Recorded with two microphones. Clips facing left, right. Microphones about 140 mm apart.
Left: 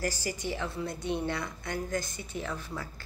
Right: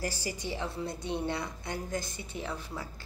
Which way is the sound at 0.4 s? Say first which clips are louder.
Left 1 dB; 25° right (ahead or behind).